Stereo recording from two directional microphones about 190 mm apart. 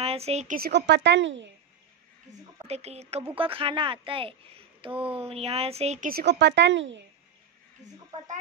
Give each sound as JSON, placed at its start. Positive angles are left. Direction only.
{"t": 0.0, "sound": "a woman's voice", "side_deg": -30}
{"t": 0.6, "sound": "speech", "side_deg": -60}
{"t": 2.7, "sound": "a child's voice", "side_deg": -35}
{"t": 6.1, "sound": "speech", "side_deg": -65}